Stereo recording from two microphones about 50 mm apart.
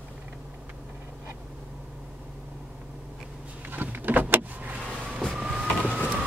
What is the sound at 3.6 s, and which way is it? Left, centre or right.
Power windows, right.